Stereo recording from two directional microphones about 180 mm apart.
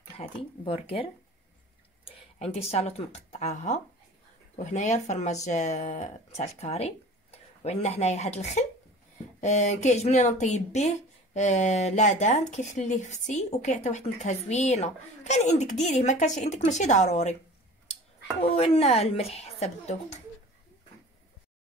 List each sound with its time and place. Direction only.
0.1 s a sound: 35° left (ahead or behind)
0.7 s speech: 30° left (ahead or behind)
2.0 s speech: 35° left (ahead or behind)
18.4 s speech: 30° left (ahead or behind)